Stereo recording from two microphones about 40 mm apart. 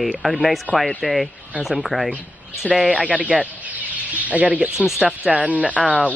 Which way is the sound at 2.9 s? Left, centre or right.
Right.